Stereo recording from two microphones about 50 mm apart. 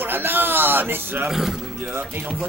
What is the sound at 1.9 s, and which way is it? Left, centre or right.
Speech, right.